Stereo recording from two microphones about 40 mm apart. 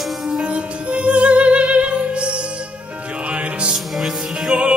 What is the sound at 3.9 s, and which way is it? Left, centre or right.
Music, centre.